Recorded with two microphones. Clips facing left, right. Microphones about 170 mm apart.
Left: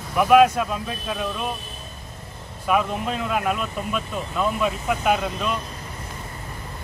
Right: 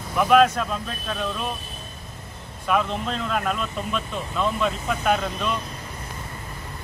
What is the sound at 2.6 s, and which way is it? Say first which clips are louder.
Speech: left 1 dB; 5° left (ahead or behind).